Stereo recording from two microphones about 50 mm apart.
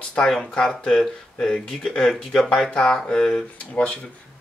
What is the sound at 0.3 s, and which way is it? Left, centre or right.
Speech, centre.